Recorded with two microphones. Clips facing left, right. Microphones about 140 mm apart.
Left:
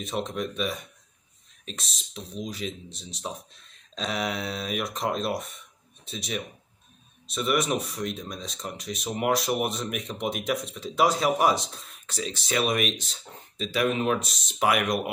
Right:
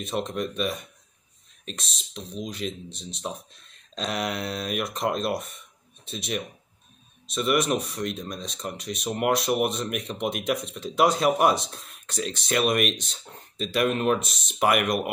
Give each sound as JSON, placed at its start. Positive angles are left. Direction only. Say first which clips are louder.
{"t": 0.0, "sound": "speech", "louder": "right 1 dB", "side_deg": 0}